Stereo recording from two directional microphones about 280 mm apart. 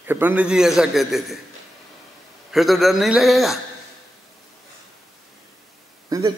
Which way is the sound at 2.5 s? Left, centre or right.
Centre.